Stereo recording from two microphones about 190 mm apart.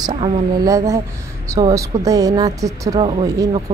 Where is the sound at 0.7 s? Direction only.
15° right (ahead or behind).